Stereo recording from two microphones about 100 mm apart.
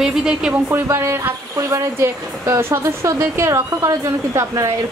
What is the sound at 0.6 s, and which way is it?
Speech, 25° right (ahead or behind).